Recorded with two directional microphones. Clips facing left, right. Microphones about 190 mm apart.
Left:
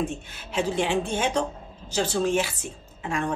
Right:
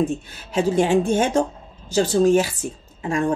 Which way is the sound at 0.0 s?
40° right (ahead or behind).